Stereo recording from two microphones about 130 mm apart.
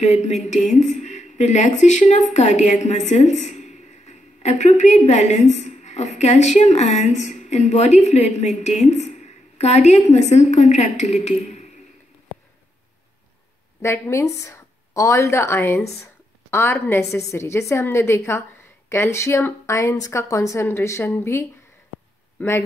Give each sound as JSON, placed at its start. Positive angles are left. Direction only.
{"t": 0.0, "sound": "a woman's voice", "side_deg": 60}
{"t": 13.7, "sound": "a woman's voice", "side_deg": 20}
{"t": 15.9, "sound": "a sound", "side_deg": 20}
{"t": 16.8, "sound": "a man's voice", "side_deg": 20}